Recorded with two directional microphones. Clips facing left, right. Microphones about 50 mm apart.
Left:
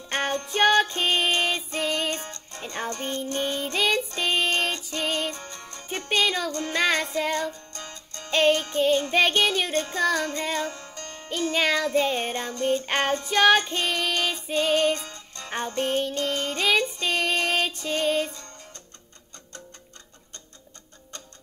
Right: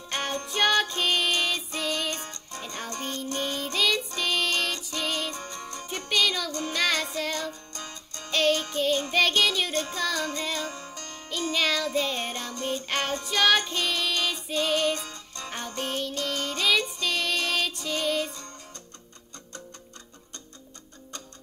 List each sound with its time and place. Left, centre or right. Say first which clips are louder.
0.1 s music: left 4 dB; left
5.3 s music: right 2 dB; centre
5.9 s music: left 2 dB; left
7.7 s music: even; centre
8.3 s music: left 3 dB; left
9.1 s child singing: left 2 dB; left
10.1 s music: left 3 dB; left
10.7 s music: right 1 dB; centre
11.0 s music: left 5 dB; left
15.0 s music: right 1 dB; centre
15.5 s music: left 6 dB; left